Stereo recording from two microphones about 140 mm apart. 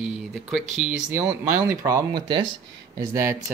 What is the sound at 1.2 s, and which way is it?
Speech, 15° right (ahead or behind).